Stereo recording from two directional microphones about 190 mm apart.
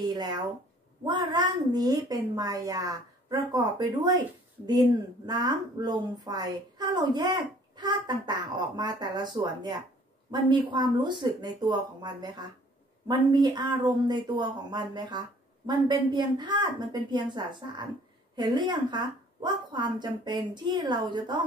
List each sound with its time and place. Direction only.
0.0 s a woman's voice: 20° right (ahead or behind)